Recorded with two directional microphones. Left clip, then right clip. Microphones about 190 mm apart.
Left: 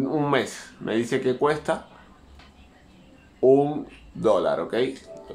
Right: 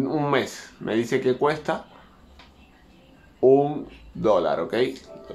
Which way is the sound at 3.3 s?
Centre (ahead or behind).